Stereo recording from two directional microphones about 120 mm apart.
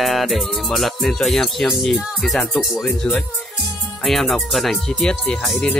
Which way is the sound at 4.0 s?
Centre (ahead or behind).